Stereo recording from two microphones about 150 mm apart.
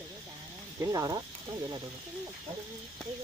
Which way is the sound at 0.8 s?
20° right (ahead or behind).